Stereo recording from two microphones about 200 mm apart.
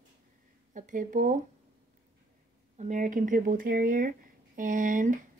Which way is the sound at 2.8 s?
40° right (ahead or behind).